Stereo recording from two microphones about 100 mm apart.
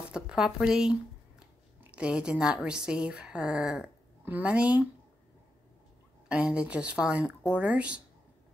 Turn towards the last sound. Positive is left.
turn(degrees=-10)  # may be behind; listen again after turning